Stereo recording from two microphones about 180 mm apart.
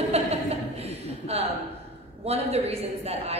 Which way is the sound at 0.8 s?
35° right (ahead or behind).